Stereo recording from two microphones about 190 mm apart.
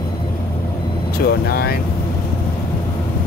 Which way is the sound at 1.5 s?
55° left (ahead or behind).